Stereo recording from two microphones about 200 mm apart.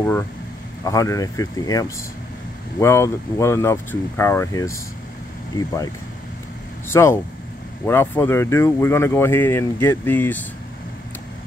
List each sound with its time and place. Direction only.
0.8 s speech: 15° left (ahead or behind)
6.9 s speech: 15° left (ahead or behind)